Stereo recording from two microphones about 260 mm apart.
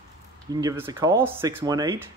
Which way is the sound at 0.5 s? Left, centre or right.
Centre.